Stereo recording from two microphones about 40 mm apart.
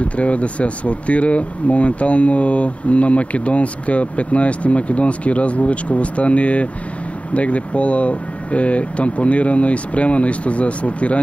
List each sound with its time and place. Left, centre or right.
0.0 s speech: left